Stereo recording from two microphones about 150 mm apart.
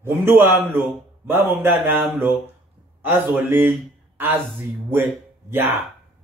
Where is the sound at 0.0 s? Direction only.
15° right (ahead or behind).